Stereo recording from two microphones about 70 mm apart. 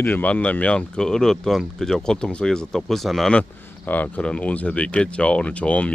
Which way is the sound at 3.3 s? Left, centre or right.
Centre.